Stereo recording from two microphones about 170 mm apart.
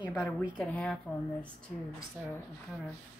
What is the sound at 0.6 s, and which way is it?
Speech, 5° left (ahead or behind).